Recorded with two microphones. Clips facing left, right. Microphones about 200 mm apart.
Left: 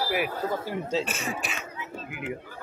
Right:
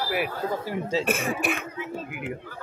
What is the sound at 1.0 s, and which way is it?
Speech, 55° right (ahead or behind).